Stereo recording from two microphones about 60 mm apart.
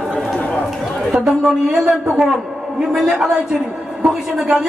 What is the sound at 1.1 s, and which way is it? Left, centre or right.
A man's voice, centre.